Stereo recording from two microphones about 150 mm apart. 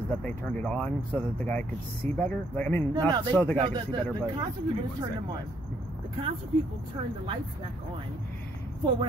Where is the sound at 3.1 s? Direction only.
30° right (ahead or behind).